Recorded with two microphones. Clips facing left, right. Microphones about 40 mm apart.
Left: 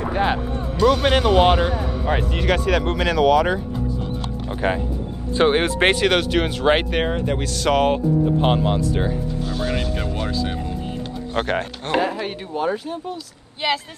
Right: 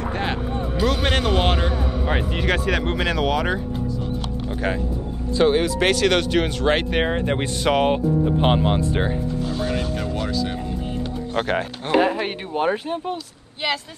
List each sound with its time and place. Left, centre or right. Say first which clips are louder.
0.0 s music: left 4 dB; centre
0.8 s speech: left 6 dB; centre
2.0 s speech: left 2 dB; centre
4.5 s speech: left 3 dB; centre
5.4 s speech: left 1 dB; left
6.0 s speech: even; centre
7.2 s speech: right 1 dB; right
7.7 s speech: left 2 dB; centre
9.6 s speech: even; left
11.3 s speech: left 1 dB; centre
12.0 s speech: right 3 dB; right